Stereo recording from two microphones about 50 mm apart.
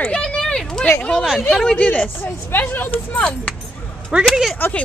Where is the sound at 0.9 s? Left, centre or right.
Left.